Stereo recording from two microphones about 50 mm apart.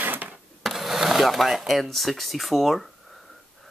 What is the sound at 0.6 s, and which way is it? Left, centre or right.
Speech, centre.